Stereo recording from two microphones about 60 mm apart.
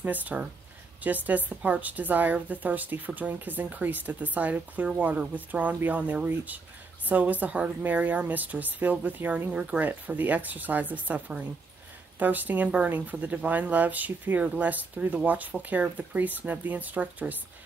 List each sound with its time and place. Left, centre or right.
0.0 s speech: right